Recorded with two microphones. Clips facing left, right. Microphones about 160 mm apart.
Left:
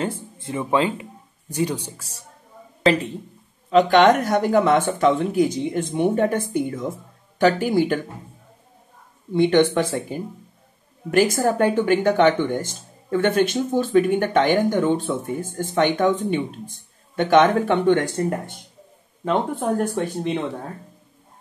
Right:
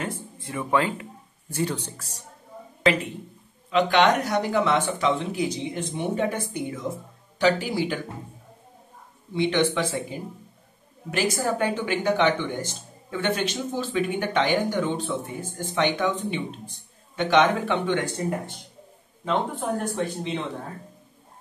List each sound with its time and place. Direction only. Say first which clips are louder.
0.0 s speech: left 5 dB; 25° left (ahead or behind); by 2.0 s 10° left (ahead or behind)
3.7 s speech: left 5 dB; 45° left (ahead or behind)
9.3 s speech: left 6 dB; 50° left (ahead or behind)
19.2 s speech: left 4 dB; 50° left (ahead or behind)